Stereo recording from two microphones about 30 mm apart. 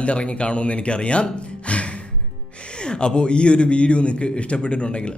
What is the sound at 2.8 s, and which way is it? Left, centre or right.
Speech, left.